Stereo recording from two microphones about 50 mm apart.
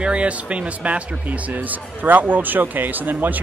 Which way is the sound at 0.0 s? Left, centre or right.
Right.